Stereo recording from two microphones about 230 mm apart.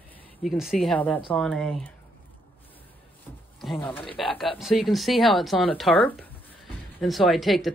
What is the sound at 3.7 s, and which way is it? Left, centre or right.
Speech, centre.